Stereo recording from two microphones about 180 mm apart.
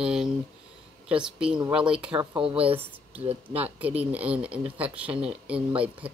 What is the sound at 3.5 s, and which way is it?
Speech, 10° right (ahead or behind).